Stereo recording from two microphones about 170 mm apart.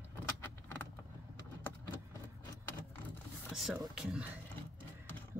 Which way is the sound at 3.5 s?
Centre (ahead or behind).